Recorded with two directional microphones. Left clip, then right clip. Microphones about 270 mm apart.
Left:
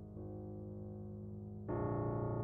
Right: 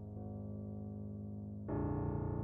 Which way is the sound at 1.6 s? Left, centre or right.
Right.